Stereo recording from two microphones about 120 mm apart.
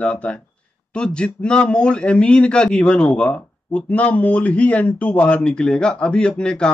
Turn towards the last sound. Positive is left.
turn(degrees=10)  # may be behind; listen again after turning